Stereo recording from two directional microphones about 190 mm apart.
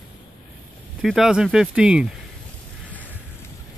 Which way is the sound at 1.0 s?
Centre (ahead or behind).